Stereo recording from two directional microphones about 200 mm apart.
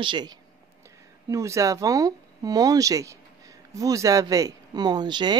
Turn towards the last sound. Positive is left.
turn(degrees=-20)  # may be behind; listen again after turning